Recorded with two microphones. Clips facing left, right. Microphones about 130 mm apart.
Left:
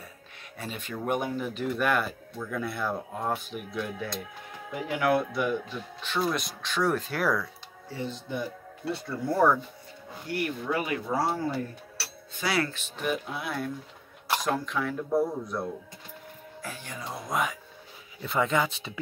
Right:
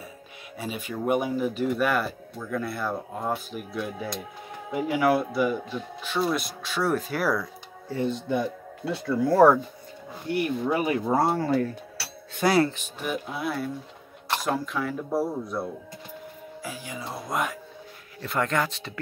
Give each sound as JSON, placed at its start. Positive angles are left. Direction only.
{"t": 0.6, "sound": "speech", "side_deg": -10}
{"t": 8.0, "sound": "speech", "side_deg": -80}
{"t": 8.9, "sound": "speech", "side_deg": -90}
{"t": 10.2, "sound": "speech", "side_deg": -25}
{"t": 11.1, "sound": "speech", "side_deg": -55}
{"t": 12.4, "sound": "speech", "side_deg": -50}
{"t": 13.0, "sound": "speech", "side_deg": 0}